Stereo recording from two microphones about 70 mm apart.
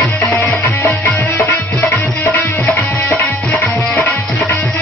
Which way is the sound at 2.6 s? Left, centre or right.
Left.